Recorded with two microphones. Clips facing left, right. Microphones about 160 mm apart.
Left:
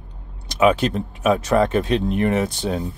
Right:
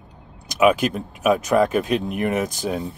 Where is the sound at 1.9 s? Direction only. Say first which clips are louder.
Left 2 dB; 10° right (ahead or behind).